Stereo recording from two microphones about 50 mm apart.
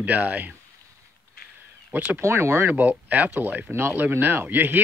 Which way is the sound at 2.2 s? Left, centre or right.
Right.